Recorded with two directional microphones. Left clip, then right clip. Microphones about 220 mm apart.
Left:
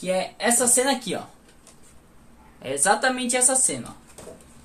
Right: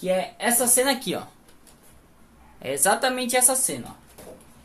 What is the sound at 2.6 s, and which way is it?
Speech, 20° right (ahead or behind).